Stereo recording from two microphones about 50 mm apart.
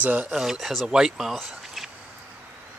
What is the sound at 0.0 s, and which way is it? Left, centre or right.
Speech, right.